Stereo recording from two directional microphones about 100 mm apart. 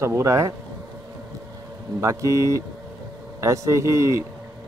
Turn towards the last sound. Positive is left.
turn(degrees=-30)  # may be behind; listen again after turning